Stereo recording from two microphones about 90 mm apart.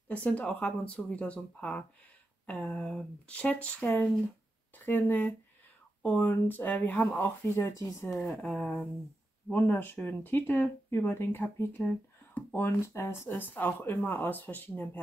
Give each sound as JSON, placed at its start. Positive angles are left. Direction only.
{"t": 0.1, "sound": "speech", "side_deg": 15}
{"t": 7.5, "sound": "speech", "side_deg": 30}
{"t": 8.4, "sound": "speech", "side_deg": 10}
{"t": 12.5, "sound": "speech", "side_deg": 30}